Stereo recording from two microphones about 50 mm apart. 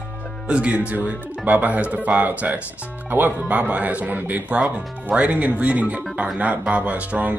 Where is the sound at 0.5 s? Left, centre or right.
Right.